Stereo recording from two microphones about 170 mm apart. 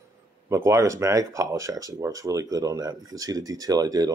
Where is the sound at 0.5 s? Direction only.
15° right (ahead or behind).